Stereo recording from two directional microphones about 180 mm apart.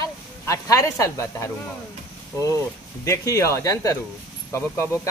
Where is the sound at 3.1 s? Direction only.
15° left (ahead or behind).